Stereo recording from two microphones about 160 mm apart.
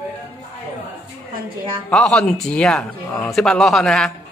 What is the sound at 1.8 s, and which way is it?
Speech, 5° left (ahead or behind).